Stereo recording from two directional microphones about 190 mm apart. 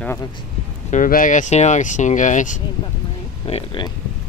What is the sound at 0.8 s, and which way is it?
Speech, 45° left (ahead or behind).